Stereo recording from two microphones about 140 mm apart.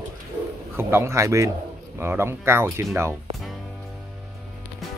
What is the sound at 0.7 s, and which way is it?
Speech, 15° right (ahead or behind).